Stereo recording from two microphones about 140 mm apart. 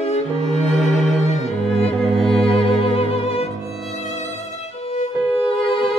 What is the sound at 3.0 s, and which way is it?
Music, 45° left (ahead or behind).